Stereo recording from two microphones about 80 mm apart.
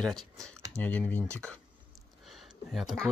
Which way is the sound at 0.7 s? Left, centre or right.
Centre.